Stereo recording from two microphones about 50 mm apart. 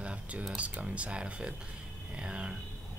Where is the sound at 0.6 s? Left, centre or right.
Right.